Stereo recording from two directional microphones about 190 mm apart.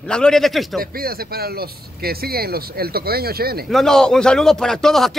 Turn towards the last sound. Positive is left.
turn(degrees=0)  # may be behind; listen again after turning